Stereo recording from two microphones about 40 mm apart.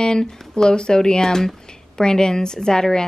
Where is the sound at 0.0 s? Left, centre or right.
Centre.